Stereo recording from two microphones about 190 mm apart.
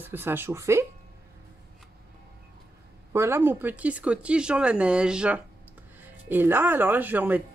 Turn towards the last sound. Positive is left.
turn(degrees=-10)  # may be behind; listen again after turning